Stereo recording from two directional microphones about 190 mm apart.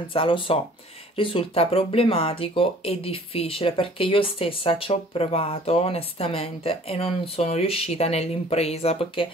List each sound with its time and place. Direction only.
0.1 s speech: 25° left (ahead or behind)